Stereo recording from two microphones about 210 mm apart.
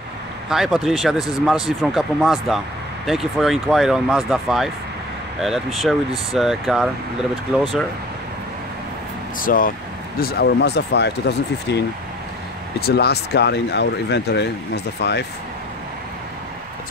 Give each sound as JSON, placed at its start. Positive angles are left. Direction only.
{"t": 0.5, "sound": "speech", "side_deg": 0}
{"t": 9.4, "sound": "speech", "side_deg": 40}
{"t": 10.2, "sound": "speech", "side_deg": 55}
{"t": 12.8, "sound": "speech", "side_deg": 50}